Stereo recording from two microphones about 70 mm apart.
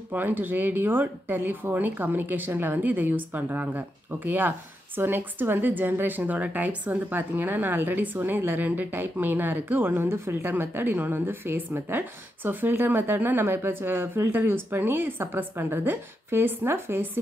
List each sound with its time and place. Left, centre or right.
0.1 s a woman's voice: right